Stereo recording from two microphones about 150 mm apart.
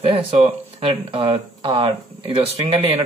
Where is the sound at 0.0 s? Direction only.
40° right (ahead or behind).